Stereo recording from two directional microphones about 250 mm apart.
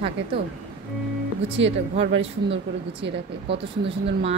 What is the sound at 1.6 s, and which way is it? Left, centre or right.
Speech, right.